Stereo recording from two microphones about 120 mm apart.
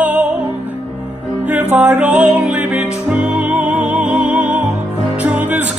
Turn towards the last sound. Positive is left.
turn(degrees=-15)  # may be behind; listen again after turning